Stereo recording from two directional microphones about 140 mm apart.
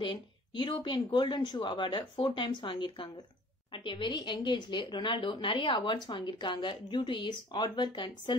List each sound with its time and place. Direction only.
0.0 s speech: 35° left (ahead or behind)